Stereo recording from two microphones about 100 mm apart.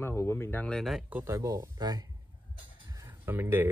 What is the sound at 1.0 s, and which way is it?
Speech, 20° right (ahead or behind).